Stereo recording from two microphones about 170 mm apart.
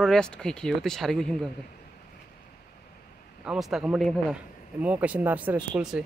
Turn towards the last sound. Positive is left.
turn(degrees=-5)  # may be behind; listen again after turning